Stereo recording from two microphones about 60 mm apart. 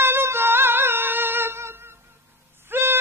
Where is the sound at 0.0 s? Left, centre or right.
Right.